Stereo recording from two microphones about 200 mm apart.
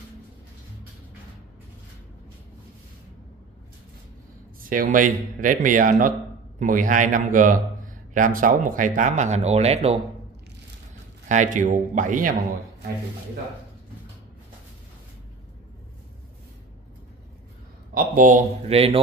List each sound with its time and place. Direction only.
4.6 s a man's voice: 40° right (ahead or behind)
11.2 s a man's voice: 40° right (ahead or behind)
17.9 s a man's voice: 40° right (ahead or behind)